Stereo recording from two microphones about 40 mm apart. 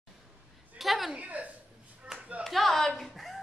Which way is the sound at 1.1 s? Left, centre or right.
Right.